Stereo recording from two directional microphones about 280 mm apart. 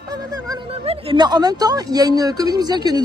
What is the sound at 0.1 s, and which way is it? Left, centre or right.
Speech, centre.